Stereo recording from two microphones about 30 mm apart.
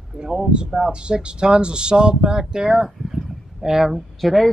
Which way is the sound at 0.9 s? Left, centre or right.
Right.